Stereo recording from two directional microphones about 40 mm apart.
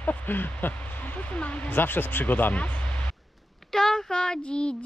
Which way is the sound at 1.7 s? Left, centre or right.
Left.